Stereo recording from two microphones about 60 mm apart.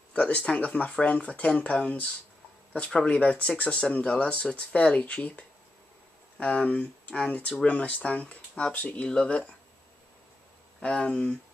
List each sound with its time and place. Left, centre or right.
0.1 s speech: left
10.8 s speech: centre